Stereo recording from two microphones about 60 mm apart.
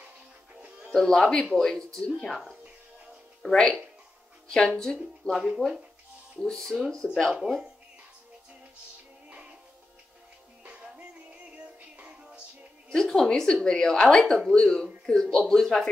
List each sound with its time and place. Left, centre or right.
0.6 s music: right
0.9 s a woman's voice: centre
3.4 s a woman's voice: centre
6.4 s a woman's voice: centre
7.3 s speech: centre
9.3 s music: right
10.6 s music: right
12.9 s a woman's voice: centre